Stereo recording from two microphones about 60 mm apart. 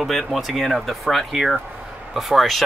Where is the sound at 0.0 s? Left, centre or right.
Centre.